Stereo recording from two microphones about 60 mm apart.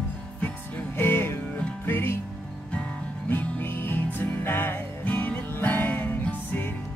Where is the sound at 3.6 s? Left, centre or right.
Left.